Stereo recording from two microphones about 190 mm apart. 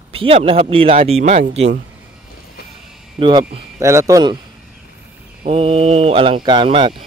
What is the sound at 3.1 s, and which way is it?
Speech, 25° right (ahead or behind).